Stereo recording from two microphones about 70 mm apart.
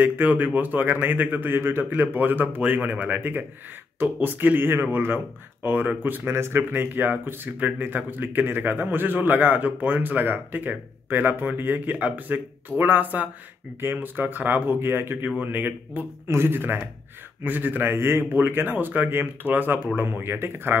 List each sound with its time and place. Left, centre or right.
0.0 s speech: right